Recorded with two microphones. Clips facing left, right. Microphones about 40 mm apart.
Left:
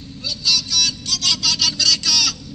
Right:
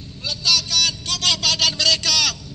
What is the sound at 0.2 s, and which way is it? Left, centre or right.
Vehicle, right.